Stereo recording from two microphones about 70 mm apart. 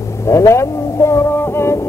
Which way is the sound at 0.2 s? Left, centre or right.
Left.